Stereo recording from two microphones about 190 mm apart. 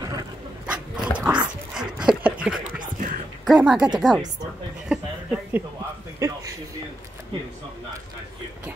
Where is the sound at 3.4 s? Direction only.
5° right (ahead or behind).